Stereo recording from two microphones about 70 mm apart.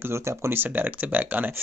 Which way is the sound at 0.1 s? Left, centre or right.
Right.